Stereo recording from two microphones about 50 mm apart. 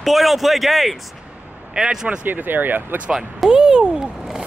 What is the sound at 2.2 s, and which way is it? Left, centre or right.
Speech, right.